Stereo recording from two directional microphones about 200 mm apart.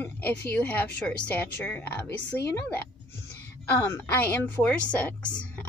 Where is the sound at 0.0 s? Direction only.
10° left (ahead or behind).